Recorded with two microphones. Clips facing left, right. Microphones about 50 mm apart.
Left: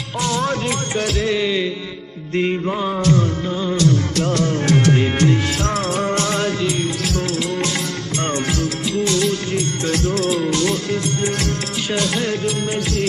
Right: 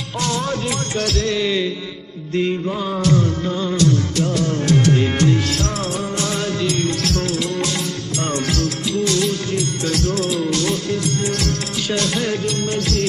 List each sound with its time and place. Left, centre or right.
0.2 s music: centre
2.3 s music: left
3.0 s music: centre
4.6 s music: left
5.0 s music: centre
5.9 s music: left
6.4 s music: centre
8.2 s music: left
10.6 s music: centre
11.2 s music: left
12.0 s music: centre